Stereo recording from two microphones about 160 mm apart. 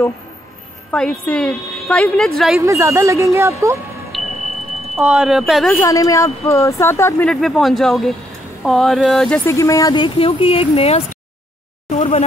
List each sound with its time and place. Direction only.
0.9 s a woman's voice: 5° left (ahead or behind)
2.6 s speech: 20° right (ahead or behind)
4.1 s a sound: centre (ahead or behind)
4.9 s a woman's voice: 5° right (ahead or behind)
5.8 s speech: 20° left (ahead or behind)
7.2 s a woman's voice: centre (ahead or behind)
9.5 s speech: 20° left (ahead or behind); by 12.2 s 45° left (ahead or behind)